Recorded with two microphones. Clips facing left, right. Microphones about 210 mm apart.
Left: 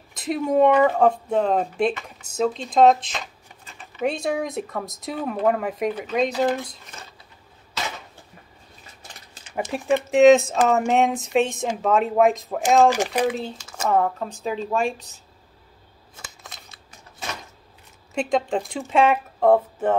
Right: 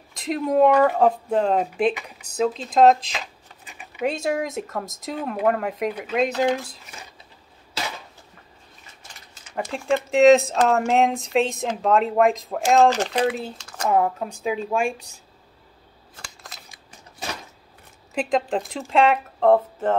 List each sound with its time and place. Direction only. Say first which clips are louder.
0.1 s speech: even; centre (ahead or behind)
3.6 s a sound: right 1 dB; 15° right (ahead or behind)
4.0 s speech: even; centre (ahead or behind)
9.6 s speech: left 1 dB; 5° left (ahead or behind)
13.9 s a woman's voice: right 1 dB; 10° right (ahead or behind)
16.4 s scissors: even; 5° right (ahead or behind)
18.1 s speech: even; centre (ahead or behind)